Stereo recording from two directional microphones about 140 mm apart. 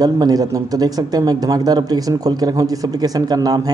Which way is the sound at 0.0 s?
30° right (ahead or behind).